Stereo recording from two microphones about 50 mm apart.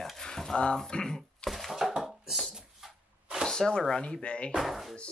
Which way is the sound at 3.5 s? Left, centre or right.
Centre.